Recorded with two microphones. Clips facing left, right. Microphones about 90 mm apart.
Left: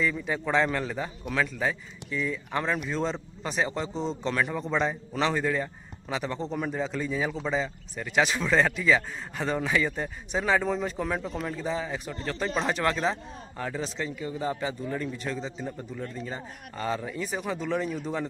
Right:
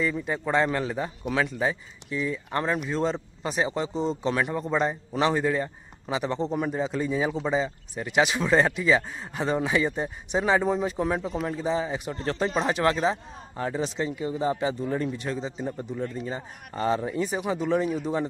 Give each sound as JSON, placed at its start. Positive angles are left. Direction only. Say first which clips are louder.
{"t": 0.0, "sound": "speech", "louder": "right 1 dB", "side_deg": -5}
{"t": 12.1, "sound": "speech", "louder": "right 4 dB", "side_deg": -30}
{"t": 12.5, "sound": "speech", "louder": "right 2 dB", "side_deg": -10}
{"t": 16.2, "sound": "speech", "louder": "right 3 dB", "side_deg": -10}
{"t": 16.7, "sound": "speech", "louder": "right 5 dB", "side_deg": -25}
{"t": 17.3, "sound": "speech", "louder": "right 3 dB", "side_deg": -15}